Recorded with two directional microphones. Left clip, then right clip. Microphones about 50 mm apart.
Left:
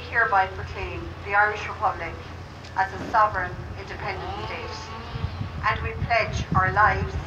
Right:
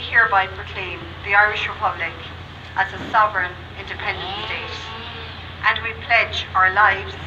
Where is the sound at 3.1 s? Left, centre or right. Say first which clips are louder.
Right 3 dB; centre.